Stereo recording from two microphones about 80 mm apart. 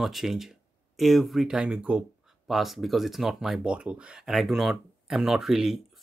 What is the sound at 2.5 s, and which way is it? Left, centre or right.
Speech, centre.